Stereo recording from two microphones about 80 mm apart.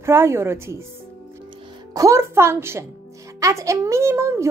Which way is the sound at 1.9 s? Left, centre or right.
Right.